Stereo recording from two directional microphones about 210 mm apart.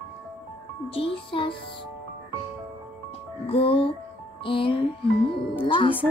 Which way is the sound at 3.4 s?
25° left (ahead or behind).